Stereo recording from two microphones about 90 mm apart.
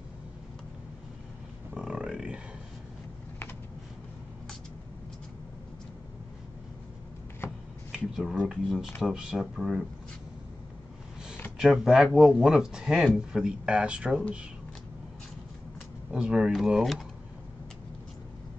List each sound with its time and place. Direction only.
1.7 s grunt: 10° right (ahead or behind)
7.4 s finger snapping: 30° left (ahead or behind)
7.9 s a sound: 5° right (ahead or behind)
9.0 s speech: 10° right (ahead or behind)
11.5 s speech: 5° right (ahead or behind)
16.1 s speech: 10° right (ahead or behind)